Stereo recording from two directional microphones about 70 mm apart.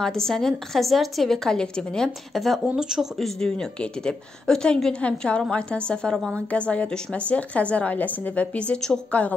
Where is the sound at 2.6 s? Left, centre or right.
Centre.